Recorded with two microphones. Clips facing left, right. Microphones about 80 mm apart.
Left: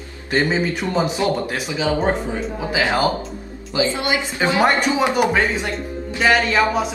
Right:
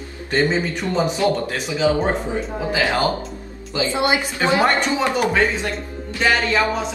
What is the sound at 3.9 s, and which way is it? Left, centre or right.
Speech, right.